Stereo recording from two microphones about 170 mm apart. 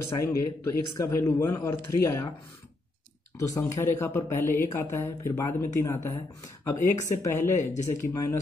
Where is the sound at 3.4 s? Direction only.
15° left (ahead or behind).